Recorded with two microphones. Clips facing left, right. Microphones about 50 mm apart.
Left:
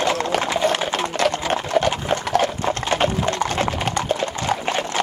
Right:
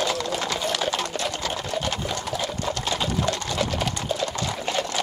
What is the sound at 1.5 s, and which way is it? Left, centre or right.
Clip-clop, left.